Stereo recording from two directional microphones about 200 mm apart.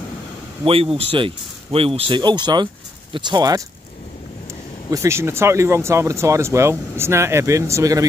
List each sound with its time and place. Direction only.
0.7 s speech: 30° right (ahead or behind)
4.9 s speech: 15° right (ahead or behind)